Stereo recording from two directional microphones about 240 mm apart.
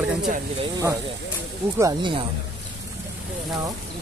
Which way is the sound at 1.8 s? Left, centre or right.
Centre.